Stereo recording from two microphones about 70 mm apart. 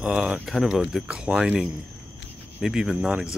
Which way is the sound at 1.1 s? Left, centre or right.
Centre.